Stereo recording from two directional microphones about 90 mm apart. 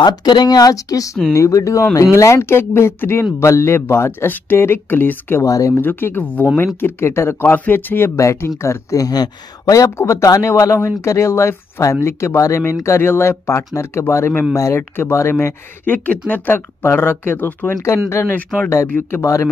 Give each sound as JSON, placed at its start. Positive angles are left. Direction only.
{"t": 0.0, "sound": "speech", "side_deg": 50}
{"t": 5.4, "sound": "speech", "side_deg": 35}
{"t": 5.8, "sound": "speech", "side_deg": 25}
{"t": 8.2, "sound": "speech", "side_deg": 35}